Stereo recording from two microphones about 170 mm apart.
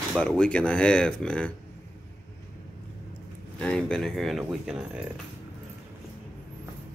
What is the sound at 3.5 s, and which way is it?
Speech, 5° left (ahead or behind).